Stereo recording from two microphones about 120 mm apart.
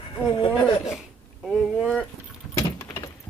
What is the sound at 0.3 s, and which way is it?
Speech, 40° left (ahead or behind).